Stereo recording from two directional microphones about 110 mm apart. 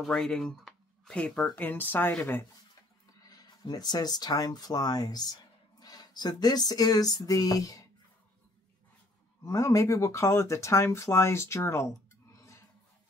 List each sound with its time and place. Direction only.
0.0 s speech: 5° left (ahead or behind)
3.2 s speech: 35° left (ahead or behind)
9.4 s speech: 30° left (ahead or behind)